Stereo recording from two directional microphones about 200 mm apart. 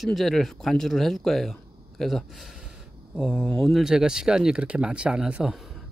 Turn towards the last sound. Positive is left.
turn(degrees=0)  # may be behind; listen again after turning